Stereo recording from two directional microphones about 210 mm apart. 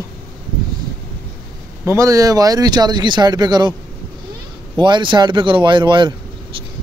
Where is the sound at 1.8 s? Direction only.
15° right (ahead or behind).